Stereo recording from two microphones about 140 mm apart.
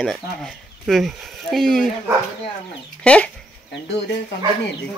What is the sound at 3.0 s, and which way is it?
Speech, 10° left (ahead or behind).